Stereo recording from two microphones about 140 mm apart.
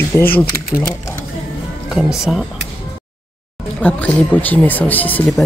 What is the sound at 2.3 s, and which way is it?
Speech, centre (ahead or behind).